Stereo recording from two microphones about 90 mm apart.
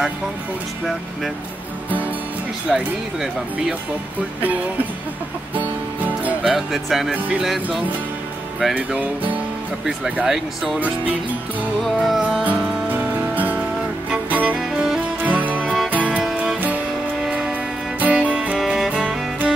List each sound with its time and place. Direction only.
2.7 s speech: 5° right (ahead or behind)
6.4 s speech: 5° right (ahead or behind)
8.7 s speech: 15° right (ahead or behind)
9.8 s speech: 5° right (ahead or behind)
11.8 s music: centre (ahead or behind)
12.4 s music: 20° right (ahead or behind)
14.6 s music: 5° right (ahead or behind)
15.2 s music: 15° right (ahead or behind)